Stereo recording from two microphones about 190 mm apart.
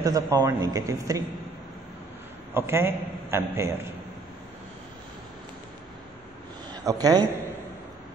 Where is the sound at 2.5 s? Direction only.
10° right (ahead or behind).